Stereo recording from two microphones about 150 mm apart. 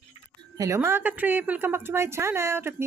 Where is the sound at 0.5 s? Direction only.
20° right (ahead or behind).